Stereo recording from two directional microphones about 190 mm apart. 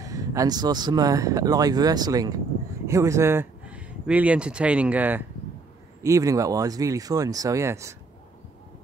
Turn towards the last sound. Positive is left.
turn(degrees=-15)  # may be behind; listen again after turning